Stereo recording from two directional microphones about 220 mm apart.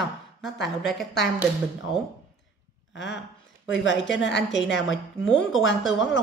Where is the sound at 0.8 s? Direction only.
Centre (ahead or behind).